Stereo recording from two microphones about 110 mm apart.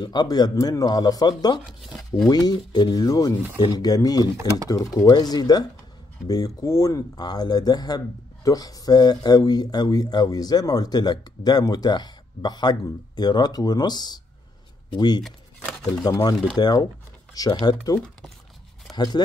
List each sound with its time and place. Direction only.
0.0 s speech: 40° left (ahead or behind)
1.7 s speech: centre (ahead or behind)
2.2 s speech: 35° left (ahead or behind)
15.2 s a sound: centre (ahead or behind)
15.9 s speech: 35° left (ahead or behind)